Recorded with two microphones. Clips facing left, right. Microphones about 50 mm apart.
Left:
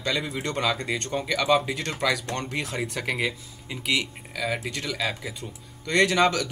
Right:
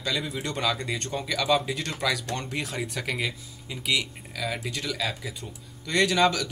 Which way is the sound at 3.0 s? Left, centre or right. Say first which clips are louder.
Left 3 dB; centre.